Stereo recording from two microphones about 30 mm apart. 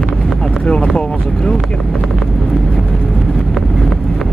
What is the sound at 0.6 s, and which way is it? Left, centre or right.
Vehicle, left.